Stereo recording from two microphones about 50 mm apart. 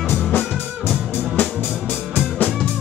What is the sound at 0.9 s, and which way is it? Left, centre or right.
Music, left.